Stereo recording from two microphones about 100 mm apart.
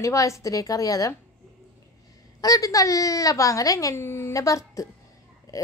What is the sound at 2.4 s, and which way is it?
Speech, 35° left (ahead or behind).